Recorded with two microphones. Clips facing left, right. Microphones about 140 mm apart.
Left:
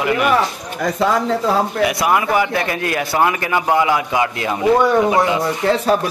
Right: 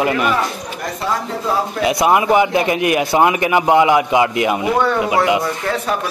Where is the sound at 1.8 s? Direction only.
20° right (ahead or behind).